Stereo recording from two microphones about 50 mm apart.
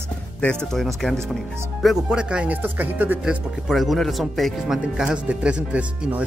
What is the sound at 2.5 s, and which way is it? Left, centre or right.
Speech, right.